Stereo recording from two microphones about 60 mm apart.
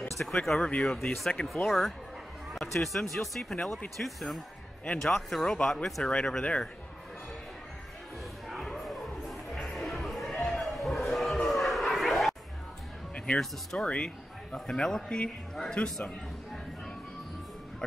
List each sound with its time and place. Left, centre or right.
0.2 s speech: centre
6.2 s speech: centre
8.5 s music: centre
13.4 s speech: centre